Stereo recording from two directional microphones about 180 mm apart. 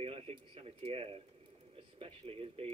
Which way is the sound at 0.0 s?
35° right (ahead or behind).